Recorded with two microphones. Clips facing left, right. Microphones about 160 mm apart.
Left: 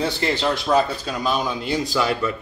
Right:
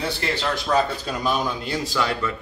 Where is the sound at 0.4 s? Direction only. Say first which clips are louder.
Left 3 dB; 15° left (ahead or behind).